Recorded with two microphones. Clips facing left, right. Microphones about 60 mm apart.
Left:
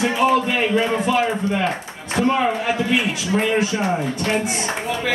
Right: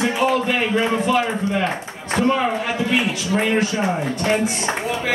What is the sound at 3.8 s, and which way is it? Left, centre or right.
Speech, centre.